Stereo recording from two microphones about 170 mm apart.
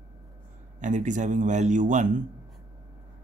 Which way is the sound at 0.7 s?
45° right (ahead or behind).